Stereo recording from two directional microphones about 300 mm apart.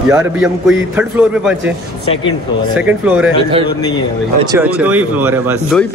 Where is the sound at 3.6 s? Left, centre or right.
Centre.